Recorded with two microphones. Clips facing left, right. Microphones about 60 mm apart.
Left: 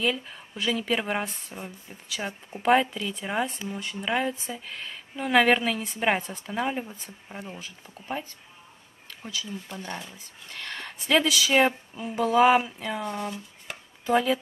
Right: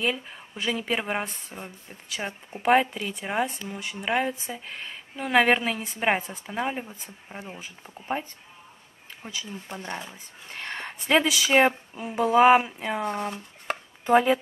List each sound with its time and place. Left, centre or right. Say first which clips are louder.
0.0 s speech: even; centre
2.9 s speech: even; right; by 7.3 s centre
7.3 s speech: even; centre
9.3 s speech: left 1 dB; right
13.0 s speech: right 3 dB; right